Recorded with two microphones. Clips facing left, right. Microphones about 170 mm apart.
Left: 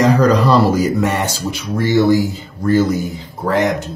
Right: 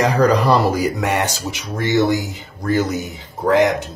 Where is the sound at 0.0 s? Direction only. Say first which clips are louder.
Left 3 dB; 15° right (ahead or behind).